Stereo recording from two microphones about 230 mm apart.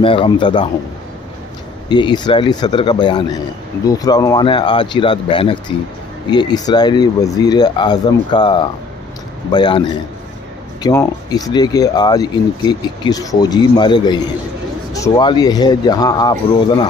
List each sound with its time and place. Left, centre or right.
0.0 s speech: left
1.9 s speech: centre